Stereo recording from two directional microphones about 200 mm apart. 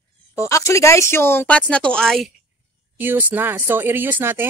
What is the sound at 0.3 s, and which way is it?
Speech, 15° left (ahead or behind).